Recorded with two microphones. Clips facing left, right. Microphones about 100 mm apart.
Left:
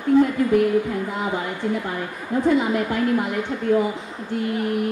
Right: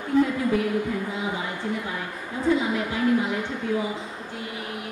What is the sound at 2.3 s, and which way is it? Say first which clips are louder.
Speech: left 10 dB; 50° left (ahead or behind).